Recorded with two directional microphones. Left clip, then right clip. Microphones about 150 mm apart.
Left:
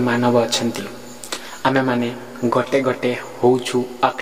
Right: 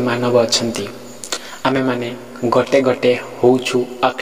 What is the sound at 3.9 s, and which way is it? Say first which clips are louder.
Speech: left 1 dB; 20° right (ahead or behind).